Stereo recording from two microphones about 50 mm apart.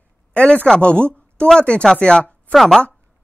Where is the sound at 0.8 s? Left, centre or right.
Left.